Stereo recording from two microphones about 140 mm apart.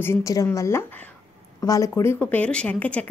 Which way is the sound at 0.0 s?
20° left (ahead or behind).